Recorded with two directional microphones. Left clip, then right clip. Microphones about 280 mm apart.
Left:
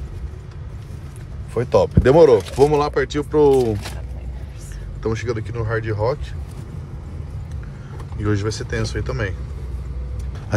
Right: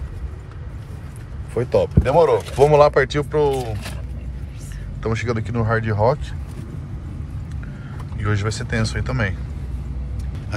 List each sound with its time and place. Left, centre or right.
1.5 s speech: centre
2.0 s speech: left
5.0 s speech: centre
8.2 s speech: centre